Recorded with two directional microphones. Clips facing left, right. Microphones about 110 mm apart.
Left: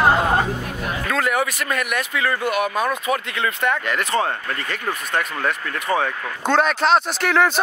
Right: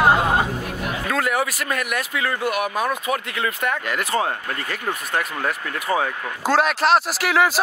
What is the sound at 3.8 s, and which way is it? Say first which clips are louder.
Speech: left 1 dB; 10° right (ahead or behind).